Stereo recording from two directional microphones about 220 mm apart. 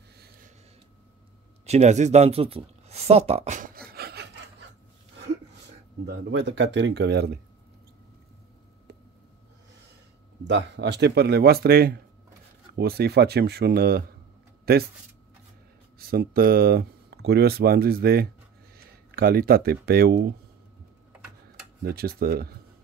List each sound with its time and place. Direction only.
1.7 s speech: 30° right (ahead or behind)
3.9 s rub: 45° right (ahead or behind)
6.0 s speech: 50° right (ahead or behind)
10.4 s speech: 55° right (ahead or behind)
16.0 s speech: 45° right (ahead or behind)
21.8 s speech: 45° right (ahead or behind)